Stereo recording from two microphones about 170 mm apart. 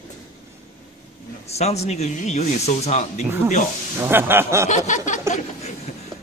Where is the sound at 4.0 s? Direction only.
15° right (ahead or behind).